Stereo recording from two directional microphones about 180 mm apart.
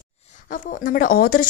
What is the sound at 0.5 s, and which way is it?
Speech, 50° left (ahead or behind).